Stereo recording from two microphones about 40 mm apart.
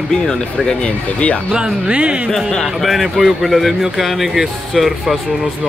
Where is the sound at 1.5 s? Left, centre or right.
Right.